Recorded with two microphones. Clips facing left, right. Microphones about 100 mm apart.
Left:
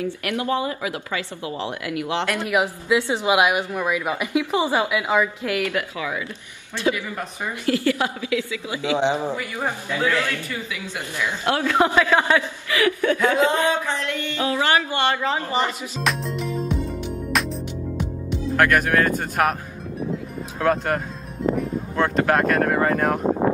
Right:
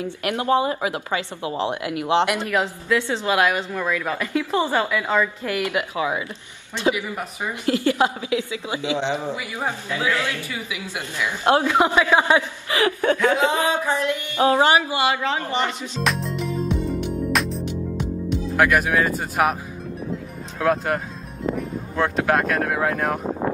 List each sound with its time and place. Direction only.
0.0 s speech: 25° right (ahead or behind)
2.4 s a woman's voice: 15° left (ahead or behind)
5.6 s speech: 20° right (ahead or behind)
8.9 s a woman's voice: 15° left (ahead or behind)
9.3 s a man's voice: 15° right (ahead or behind); by 16.8 s centre (ahead or behind)
17.3 s music: centre (ahead or behind)
18.6 s speech: 5° right (ahead or behind)
20.5 s speech: centre (ahead or behind)